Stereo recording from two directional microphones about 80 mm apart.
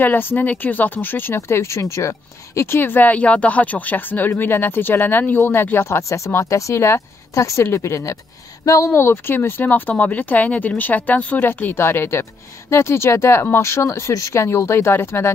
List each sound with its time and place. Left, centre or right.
0.0 s speech: left